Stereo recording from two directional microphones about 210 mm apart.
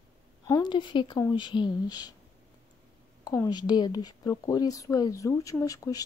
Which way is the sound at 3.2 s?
15° left (ahead or behind).